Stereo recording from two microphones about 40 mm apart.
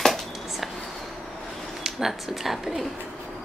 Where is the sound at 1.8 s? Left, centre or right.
Centre.